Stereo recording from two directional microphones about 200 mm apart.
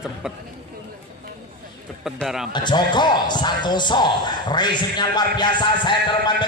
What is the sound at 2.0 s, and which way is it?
Speech, centre (ahead or behind).